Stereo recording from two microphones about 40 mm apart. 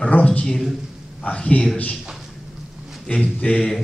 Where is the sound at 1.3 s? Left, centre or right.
Left.